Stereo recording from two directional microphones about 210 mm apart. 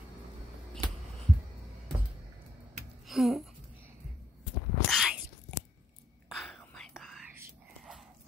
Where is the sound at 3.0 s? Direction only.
Centre (ahead or behind).